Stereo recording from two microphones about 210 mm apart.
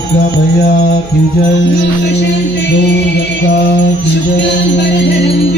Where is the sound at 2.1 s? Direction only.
55° left (ahead or behind).